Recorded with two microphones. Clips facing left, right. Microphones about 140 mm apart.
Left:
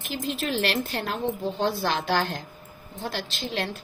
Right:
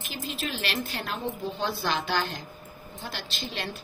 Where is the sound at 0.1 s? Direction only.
75° left (ahead or behind).